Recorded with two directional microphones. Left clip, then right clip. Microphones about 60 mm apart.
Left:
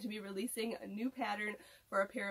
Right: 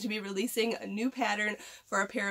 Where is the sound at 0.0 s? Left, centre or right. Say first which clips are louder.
Right 9 dB; right.